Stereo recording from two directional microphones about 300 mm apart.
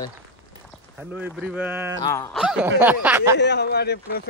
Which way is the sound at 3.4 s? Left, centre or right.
Left.